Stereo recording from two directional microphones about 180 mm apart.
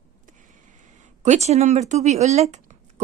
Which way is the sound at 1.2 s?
40° right (ahead or behind).